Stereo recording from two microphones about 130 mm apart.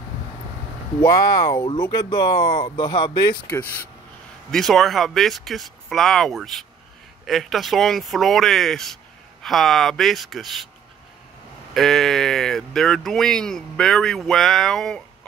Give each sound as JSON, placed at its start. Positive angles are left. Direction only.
{"t": 1.0, "sound": "speech", "side_deg": 30}
{"t": 4.5, "sound": "speech", "side_deg": 0}
{"t": 11.7, "sound": "speech", "side_deg": 0}